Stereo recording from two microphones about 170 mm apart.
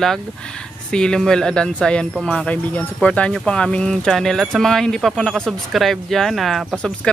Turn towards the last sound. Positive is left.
turn(degrees=5)  # may be behind; listen again after turning